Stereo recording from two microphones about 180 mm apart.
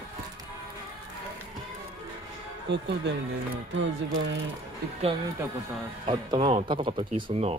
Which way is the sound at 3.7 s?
90° right.